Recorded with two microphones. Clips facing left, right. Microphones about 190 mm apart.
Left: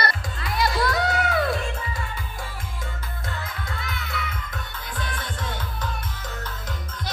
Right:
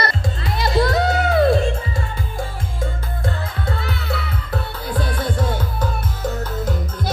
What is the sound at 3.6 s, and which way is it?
Music, 30° right (ahead or behind).